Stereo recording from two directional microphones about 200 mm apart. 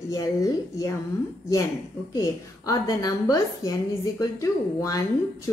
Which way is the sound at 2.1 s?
15° left (ahead or behind).